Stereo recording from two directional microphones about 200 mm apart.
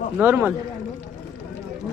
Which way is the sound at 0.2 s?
10° right (ahead or behind).